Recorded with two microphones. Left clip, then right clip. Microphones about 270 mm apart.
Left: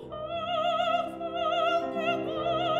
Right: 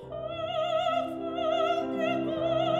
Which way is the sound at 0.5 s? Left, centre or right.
Left.